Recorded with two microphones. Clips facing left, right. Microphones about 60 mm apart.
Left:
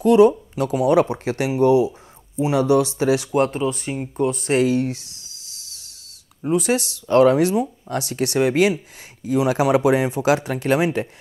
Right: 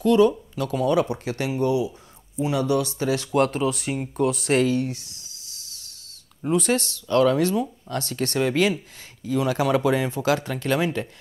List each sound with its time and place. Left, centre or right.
0.0 s speech: left
1.6 s a sound: left
2.4 s speech: left
3.3 s speech: centre
4.6 s speech: left
6.4 s speech: centre
7.1 s speech: left